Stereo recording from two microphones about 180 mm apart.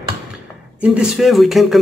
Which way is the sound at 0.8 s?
5° right (ahead or behind).